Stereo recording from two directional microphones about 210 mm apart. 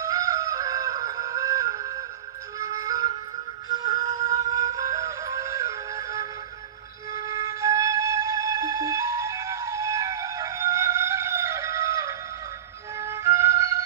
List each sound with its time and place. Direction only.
0.0 s music: 15° right (ahead or behind)